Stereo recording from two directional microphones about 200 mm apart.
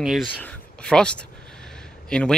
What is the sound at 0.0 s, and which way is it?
Speech, centre (ahead or behind).